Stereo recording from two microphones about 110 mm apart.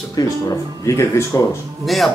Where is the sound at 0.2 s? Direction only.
35° left (ahead or behind).